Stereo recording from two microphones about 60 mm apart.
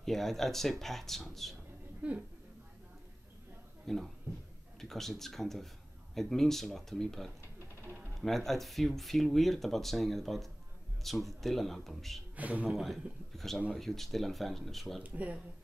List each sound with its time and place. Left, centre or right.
0.0 s speech: centre
2.0 s speech: right
3.8 s speech: centre
12.4 s speech: right
12.6 s speech: centre
15.0 s speech: right